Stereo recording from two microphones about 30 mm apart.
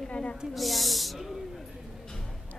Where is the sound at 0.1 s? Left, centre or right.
Left.